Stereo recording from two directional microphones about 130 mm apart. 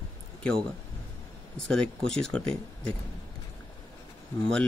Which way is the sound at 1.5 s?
5° left (ahead or behind).